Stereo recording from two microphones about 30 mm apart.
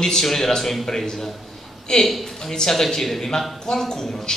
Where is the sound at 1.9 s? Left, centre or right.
Left.